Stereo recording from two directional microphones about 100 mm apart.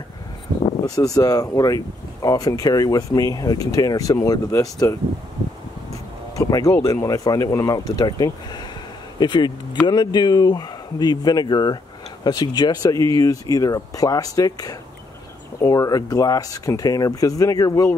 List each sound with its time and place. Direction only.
0.8 s speech: 40° left (ahead or behind)
6.3 s speech: 35° left (ahead or behind)